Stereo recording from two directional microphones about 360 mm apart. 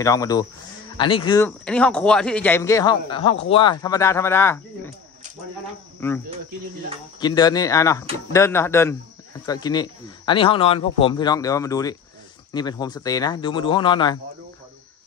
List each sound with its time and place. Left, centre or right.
0.0 s speech: centre
5.9 s speech: centre